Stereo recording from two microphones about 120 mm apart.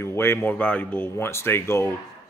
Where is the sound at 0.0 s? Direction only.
20° left (ahead or behind).